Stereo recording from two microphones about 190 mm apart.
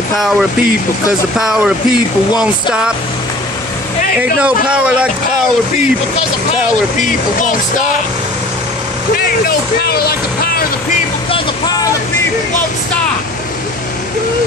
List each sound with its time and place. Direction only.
1.4 s speech: 5° right (ahead or behind)
4.2 s speech: 5° right (ahead or behind)
7.0 s speech: 40° left (ahead or behind)
10.0 s speech: 50° left (ahead or behind)